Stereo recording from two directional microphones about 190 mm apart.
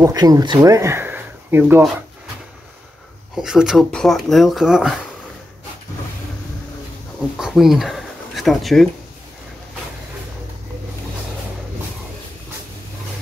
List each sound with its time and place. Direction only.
0.0 s speech: 20° right (ahead or behind)
3.3 s speech: centre (ahead or behind)
7.3 s speech: centre (ahead or behind)